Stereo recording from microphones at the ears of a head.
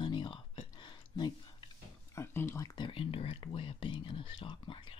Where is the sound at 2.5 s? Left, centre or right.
Left.